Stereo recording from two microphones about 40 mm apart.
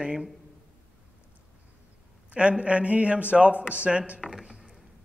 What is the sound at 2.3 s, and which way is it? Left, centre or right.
A man's voice, right.